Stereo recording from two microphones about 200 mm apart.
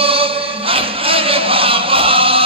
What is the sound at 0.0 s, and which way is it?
Chant, 30° right (ahead or behind).